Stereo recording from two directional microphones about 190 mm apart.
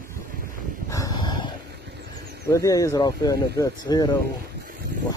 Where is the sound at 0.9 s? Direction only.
20° left (ahead or behind).